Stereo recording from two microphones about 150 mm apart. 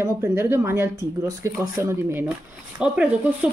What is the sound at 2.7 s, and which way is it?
Speech, 5° right (ahead or behind).